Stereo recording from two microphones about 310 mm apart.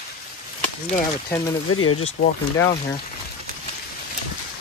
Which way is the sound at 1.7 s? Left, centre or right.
Left.